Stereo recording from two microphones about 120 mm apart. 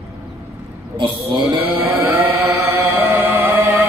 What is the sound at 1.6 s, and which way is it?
Chant, 15° right (ahead or behind).